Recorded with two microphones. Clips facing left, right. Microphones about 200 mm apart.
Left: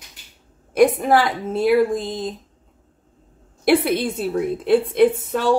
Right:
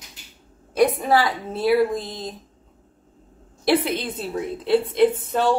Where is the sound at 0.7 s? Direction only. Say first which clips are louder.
Left 3 dB; 50° left (ahead or behind).